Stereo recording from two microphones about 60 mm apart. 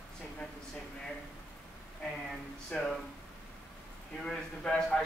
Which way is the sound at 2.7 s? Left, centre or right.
Centre.